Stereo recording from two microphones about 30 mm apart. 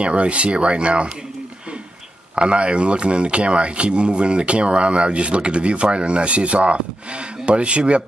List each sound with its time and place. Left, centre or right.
0.0 s speech: right
2.3 s speech: right